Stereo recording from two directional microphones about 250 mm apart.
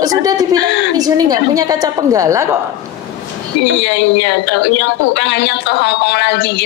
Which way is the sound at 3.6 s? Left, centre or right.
Left.